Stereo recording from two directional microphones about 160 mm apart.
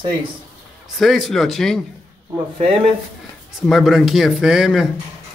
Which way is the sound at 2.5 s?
35° right (ahead or behind).